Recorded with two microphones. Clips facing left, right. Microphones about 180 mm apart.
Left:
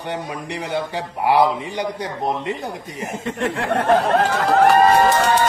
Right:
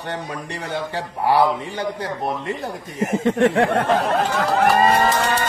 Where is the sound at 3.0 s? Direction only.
90° right.